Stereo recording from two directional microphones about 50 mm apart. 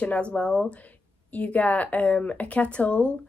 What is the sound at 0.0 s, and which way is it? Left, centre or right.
Speech, left.